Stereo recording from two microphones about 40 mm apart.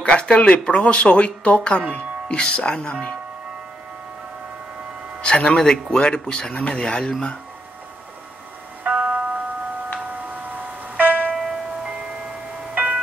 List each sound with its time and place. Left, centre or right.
0.0 s speech: left
5.2 s speech: left
8.8 s music: right
11.0 s music: right
11.3 s music: centre
12.7 s music: right